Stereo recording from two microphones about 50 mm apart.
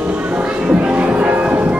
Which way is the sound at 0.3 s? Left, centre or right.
Right.